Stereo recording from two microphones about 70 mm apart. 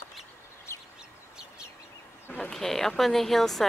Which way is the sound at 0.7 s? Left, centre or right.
Left.